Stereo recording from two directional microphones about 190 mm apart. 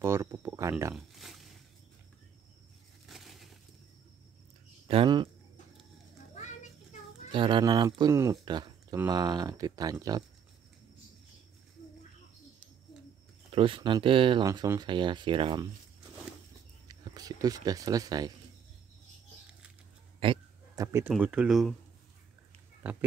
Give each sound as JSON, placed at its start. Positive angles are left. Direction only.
{"t": 0.0, "sound": "speech", "side_deg": -15}
{"t": 0.9, "sound": "a sound", "side_deg": 0}
{"t": 3.1, "sound": "a sound", "side_deg": 0}
{"t": 4.8, "sound": "speech", "side_deg": -25}
{"t": 6.3, "sound": "children playing", "side_deg": 40}
{"t": 7.3, "sound": "speech", "side_deg": -25}
{"t": 13.5, "sound": "speech", "side_deg": -30}
{"t": 16.8, "sound": "speech", "side_deg": -20}
{"t": 20.2, "sound": "a sound", "side_deg": -25}
{"t": 21.1, "sound": "speech", "side_deg": -5}